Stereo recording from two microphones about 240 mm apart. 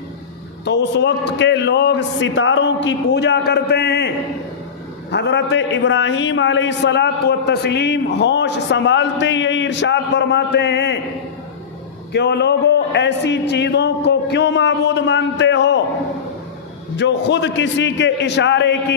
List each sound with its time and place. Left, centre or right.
0.7 s a man's voice: left
5.1 s a man's voice: left
12.1 s a man's voice: left
16.9 s a man's voice: left